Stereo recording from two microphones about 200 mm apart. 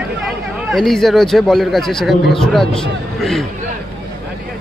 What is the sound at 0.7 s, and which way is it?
A man's voice, centre (ahead or behind).